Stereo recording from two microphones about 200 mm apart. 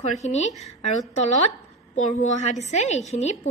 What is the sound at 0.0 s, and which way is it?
Speech, 35° left (ahead or behind).